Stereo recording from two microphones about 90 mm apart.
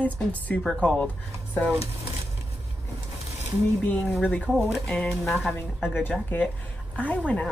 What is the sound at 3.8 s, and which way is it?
A woman's voice, 20° left (ahead or behind).